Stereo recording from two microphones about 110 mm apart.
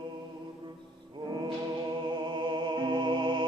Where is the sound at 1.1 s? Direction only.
40° right (ahead or behind).